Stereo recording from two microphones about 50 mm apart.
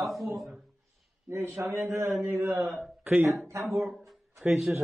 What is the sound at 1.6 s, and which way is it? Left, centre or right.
Speech, right.